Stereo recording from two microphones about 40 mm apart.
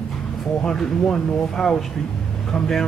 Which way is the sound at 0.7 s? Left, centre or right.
Centre.